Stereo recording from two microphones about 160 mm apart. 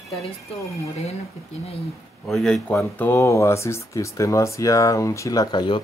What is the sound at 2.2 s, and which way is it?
Speech, 5° left (ahead or behind).